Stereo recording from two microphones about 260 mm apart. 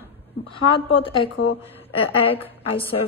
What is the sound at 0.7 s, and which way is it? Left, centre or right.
Speech, left.